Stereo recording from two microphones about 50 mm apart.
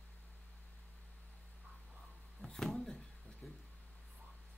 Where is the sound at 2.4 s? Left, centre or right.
Centre.